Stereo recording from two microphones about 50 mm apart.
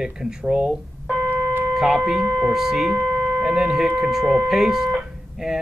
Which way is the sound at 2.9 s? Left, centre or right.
Right.